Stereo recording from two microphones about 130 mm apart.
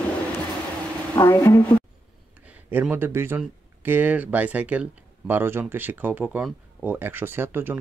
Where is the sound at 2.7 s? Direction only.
15° right (ahead or behind).